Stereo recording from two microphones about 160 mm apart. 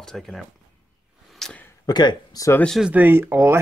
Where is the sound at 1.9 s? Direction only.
25° left (ahead or behind).